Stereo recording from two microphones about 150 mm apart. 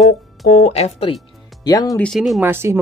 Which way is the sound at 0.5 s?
55° left (ahead or behind).